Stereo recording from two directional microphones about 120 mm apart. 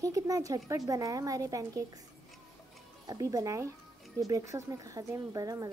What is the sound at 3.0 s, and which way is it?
A child's voice, 30° right (ahead or behind).